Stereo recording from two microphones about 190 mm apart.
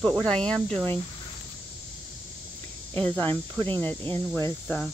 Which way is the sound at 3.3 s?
25° right (ahead or behind).